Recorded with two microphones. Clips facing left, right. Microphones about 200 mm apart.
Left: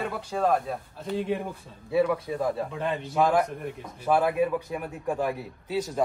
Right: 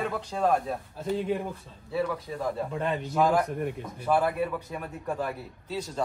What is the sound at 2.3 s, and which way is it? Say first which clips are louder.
Speech: left 5 dB; 15° left (ahead or behind).